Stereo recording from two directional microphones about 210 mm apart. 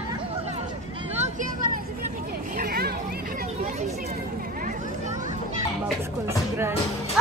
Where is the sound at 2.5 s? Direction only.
50° right (ahead or behind).